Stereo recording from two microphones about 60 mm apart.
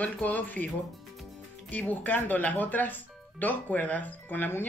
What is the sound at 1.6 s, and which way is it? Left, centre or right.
Speech, left.